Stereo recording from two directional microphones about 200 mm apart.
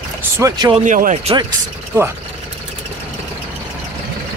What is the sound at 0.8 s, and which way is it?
Speech, 40° right (ahead or behind).